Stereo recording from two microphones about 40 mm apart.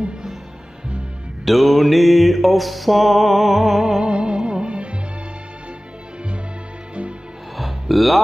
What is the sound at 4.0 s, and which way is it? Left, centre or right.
Music, right.